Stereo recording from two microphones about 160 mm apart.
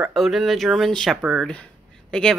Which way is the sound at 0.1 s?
Centre (ahead or behind).